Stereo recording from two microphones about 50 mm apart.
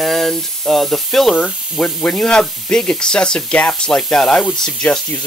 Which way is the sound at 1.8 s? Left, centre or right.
Left.